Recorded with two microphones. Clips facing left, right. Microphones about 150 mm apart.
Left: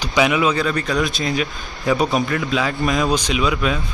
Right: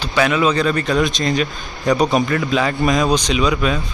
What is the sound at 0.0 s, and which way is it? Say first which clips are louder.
A man's voice: right 1 dB; 15° left (ahead or behind).